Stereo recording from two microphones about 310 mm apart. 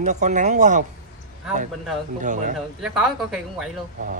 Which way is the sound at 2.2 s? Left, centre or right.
Right.